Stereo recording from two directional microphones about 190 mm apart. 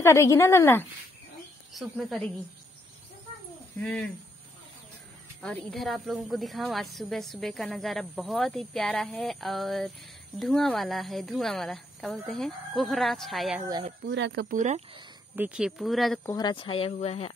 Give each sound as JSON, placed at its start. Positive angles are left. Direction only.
{"t": 0.0, "sound": "speech", "side_deg": 15}
{"t": 1.7, "sound": "a woman's voice", "side_deg": 0}
{"t": 5.4, "sound": "a woman's voice", "side_deg": 5}
{"t": 14.0, "sound": "speech", "side_deg": -70}
{"t": 14.5, "sound": "speech", "side_deg": -40}
{"t": 15.3, "sound": "a woman's voice", "side_deg": -5}
{"t": 16.3, "sound": "speech", "side_deg": 20}